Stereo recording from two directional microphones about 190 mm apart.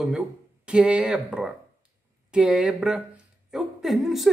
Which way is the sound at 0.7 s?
5° right (ahead or behind).